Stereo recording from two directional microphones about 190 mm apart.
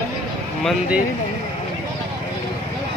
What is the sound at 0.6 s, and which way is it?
Speech, centre (ahead or behind).